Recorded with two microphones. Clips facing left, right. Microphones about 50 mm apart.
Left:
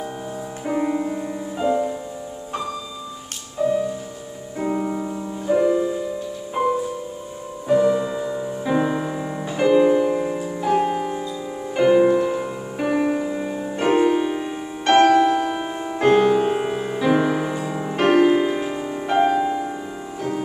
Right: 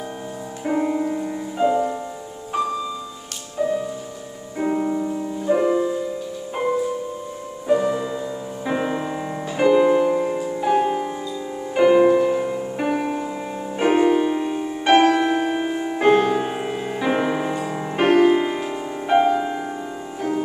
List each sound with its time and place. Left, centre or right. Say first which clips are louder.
0.7 s music: right 1 dB; centre
1.6 s music: right 2 dB; centre
3.6 s music: left 2 dB; centre
7.6 s music: left 2 dB; centre
8.6 s music: left 2 dB; centre
20.2 s music: right 2 dB; centre